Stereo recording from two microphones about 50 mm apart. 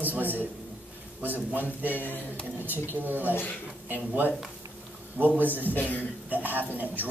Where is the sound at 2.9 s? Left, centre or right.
Right.